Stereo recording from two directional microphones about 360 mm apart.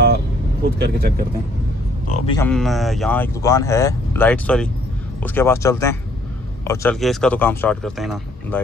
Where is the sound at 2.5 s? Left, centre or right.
Centre.